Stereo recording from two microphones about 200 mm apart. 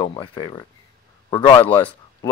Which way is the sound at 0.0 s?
25° left (ahead or behind).